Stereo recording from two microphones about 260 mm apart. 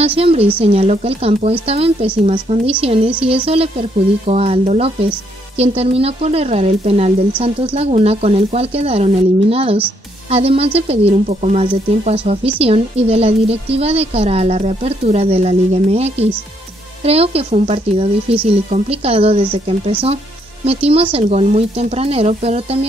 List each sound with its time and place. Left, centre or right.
0.0 s speech: right